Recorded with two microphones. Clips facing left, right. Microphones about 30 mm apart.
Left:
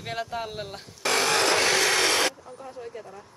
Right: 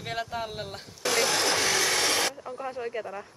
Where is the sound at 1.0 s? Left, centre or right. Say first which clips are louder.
Left 3 dB; left.